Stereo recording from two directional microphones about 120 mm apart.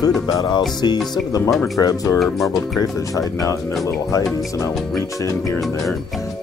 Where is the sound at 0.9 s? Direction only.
5° left (ahead or behind).